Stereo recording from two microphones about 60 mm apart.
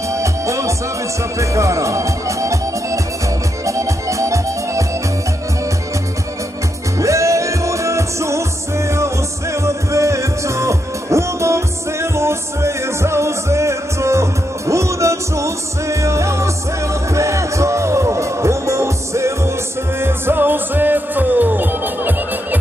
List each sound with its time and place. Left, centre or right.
0.1 s music: right
7.0 s music: right
20.0 s music: right